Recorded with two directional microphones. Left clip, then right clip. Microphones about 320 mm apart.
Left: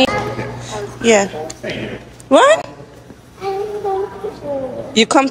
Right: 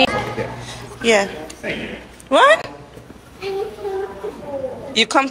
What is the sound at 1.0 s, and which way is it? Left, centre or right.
A woman's voice, centre.